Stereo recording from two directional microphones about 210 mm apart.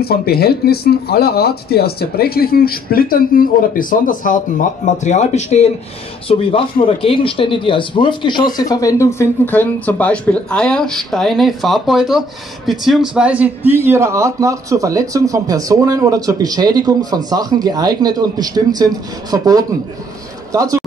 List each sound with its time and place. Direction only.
0.0 s speech: 45° left (ahead or behind); by 20.8 s 15° right (ahead or behind)